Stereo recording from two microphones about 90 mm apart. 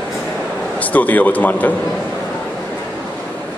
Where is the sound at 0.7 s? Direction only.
20° left (ahead or behind).